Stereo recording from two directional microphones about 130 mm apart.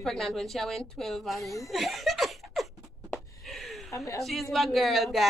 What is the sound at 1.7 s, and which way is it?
Laughter, centre (ahead or behind).